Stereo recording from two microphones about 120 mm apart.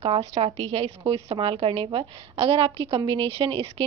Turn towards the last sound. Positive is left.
turn(degrees=-50)  # may be behind; listen again after turning